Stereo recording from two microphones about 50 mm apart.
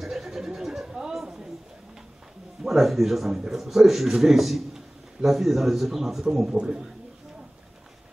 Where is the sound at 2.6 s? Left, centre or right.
Centre.